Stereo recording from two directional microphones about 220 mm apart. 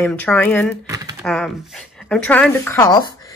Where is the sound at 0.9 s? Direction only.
15° right (ahead or behind).